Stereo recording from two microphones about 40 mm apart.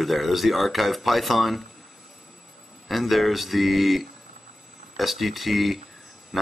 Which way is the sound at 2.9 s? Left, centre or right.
Centre.